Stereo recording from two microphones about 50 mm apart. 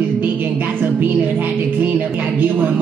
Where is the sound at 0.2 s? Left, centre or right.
Right.